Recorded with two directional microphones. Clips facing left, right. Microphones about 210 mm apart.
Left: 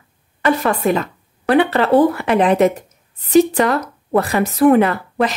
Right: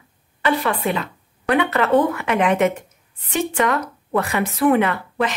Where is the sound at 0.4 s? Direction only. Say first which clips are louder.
Left 4 dB; 45° left (ahead or behind).